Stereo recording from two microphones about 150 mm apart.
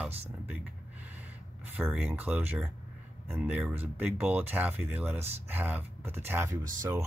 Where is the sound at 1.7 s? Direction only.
5° right (ahead or behind).